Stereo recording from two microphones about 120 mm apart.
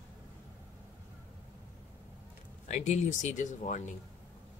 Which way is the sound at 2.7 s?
85° left.